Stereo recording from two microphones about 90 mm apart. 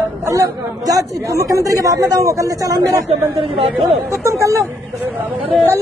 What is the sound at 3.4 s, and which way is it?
Speech, 90° right.